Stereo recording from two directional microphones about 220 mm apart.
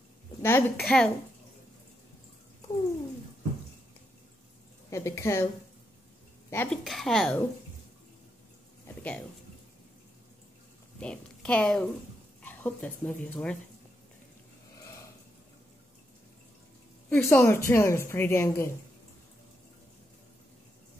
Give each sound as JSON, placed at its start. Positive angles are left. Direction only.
{"t": 0.4, "sound": "a woman's voice", "side_deg": 10}
{"t": 4.9, "sound": "a woman's voice", "side_deg": 15}
{"t": 6.5, "sound": "a woman's voice", "side_deg": 10}
{"t": 8.8, "sound": "a sound", "side_deg": 5}
{"t": 11.0, "sound": "a woman's voice", "side_deg": 5}
{"t": 17.1, "sound": "a woman's voice", "side_deg": 10}